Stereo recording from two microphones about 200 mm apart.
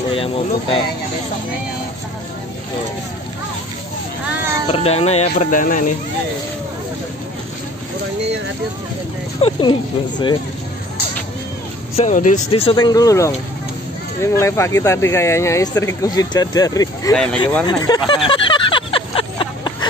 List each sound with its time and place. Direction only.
0.1 s speech: 30° left (ahead or behind)
4.6 s speech: 30° left (ahead or behind)
9.4 s speech: 25° left (ahead or behind)
12.0 s speech: 40° left (ahead or behind); by 17.1 s 15° left (ahead or behind)
17.1 s speech: 5° left (ahead or behind)
17.6 s vehicle: 20° left (ahead or behind)